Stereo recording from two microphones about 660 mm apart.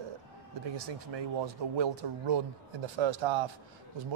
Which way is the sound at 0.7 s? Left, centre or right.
Right.